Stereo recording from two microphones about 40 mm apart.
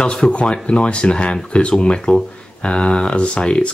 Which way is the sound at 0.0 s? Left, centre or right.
Left.